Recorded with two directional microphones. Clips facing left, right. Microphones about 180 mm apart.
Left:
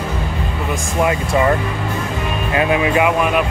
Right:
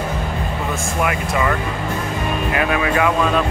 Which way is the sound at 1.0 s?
30° left (ahead or behind).